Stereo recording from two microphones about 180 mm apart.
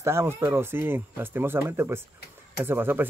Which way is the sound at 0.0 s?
15° right (ahead or behind).